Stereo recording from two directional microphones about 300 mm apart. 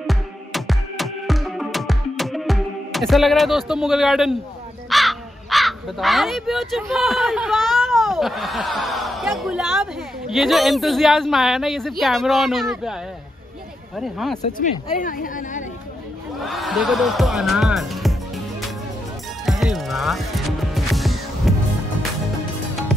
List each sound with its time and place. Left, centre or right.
0.0 s music: centre
4.8 s speech: centre
13.9 s speech: centre
14.4 s speech: left
16.4 s speech: centre
19.4 s music: centre